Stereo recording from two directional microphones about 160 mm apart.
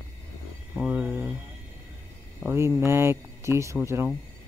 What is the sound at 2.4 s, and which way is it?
Speech, 15° right (ahead or behind).